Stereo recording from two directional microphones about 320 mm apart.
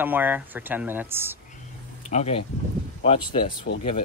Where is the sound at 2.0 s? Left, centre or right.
Left.